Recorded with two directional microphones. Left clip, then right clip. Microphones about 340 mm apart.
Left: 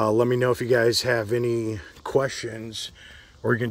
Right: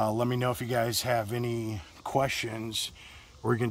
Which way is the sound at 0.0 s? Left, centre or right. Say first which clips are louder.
Left 8 dB; centre.